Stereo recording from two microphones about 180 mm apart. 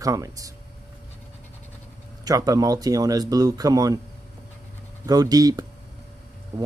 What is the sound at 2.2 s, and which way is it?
Speech, 20° right (ahead or behind).